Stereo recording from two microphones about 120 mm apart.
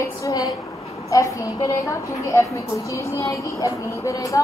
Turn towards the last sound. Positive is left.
turn(degrees=25)  # may be behind; listen again after turning